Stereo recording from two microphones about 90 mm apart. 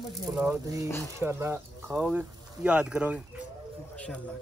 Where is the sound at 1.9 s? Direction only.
Centre (ahead or behind).